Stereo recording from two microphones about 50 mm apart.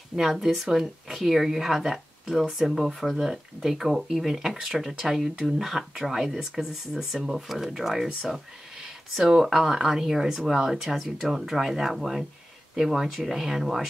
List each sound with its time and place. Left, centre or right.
0.1 s speech: centre